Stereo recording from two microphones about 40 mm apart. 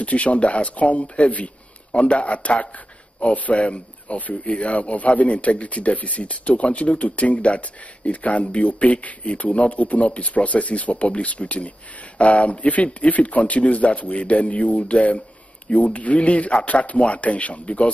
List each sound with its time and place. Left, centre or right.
0.0 s speech: left